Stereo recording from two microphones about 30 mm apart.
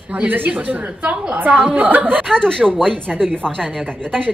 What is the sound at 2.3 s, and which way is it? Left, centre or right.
Speech, left.